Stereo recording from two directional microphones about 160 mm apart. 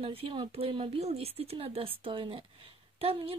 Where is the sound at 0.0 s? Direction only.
35° right (ahead or behind).